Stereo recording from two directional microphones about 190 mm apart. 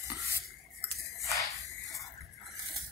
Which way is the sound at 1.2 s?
15° left (ahead or behind).